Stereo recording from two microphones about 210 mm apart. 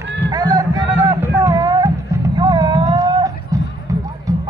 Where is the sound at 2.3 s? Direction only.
20° right (ahead or behind).